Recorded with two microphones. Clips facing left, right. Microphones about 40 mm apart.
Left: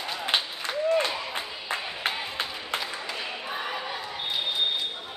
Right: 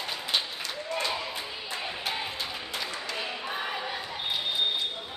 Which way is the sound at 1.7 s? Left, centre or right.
Left.